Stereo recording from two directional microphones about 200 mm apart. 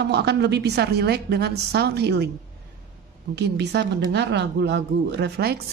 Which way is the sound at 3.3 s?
55° right (ahead or behind).